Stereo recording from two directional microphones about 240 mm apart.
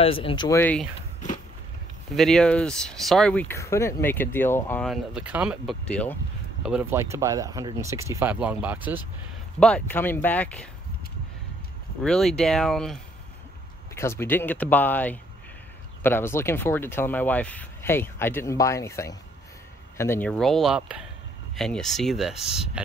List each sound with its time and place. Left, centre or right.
0.0 s speech: left
2.1 s speech: centre
5.9 s speech: centre
6.6 s speech: centre
9.6 s speech: centre
12.0 s speech: centre